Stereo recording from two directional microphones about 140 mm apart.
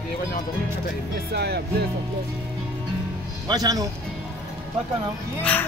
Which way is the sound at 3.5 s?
25° right (ahead or behind).